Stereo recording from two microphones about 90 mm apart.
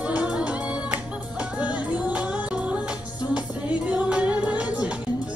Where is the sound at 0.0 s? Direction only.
10° right (ahead or behind).